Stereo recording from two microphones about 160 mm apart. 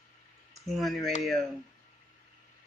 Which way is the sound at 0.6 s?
Centre (ahead or behind).